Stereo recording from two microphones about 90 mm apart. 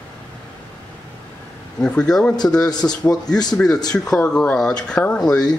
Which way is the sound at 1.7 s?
10° left (ahead or behind).